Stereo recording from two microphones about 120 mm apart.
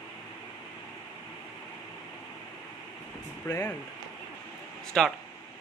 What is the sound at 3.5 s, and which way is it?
Speech, 30° left (ahead or behind).